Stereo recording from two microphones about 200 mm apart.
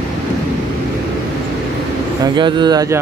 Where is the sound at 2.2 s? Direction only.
20° right (ahead or behind).